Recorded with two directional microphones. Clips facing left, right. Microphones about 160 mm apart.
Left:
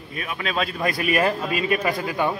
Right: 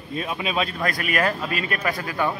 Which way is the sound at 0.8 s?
15° left (ahead or behind).